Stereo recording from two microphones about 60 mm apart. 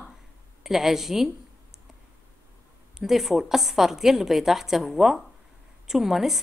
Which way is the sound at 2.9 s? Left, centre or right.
Centre.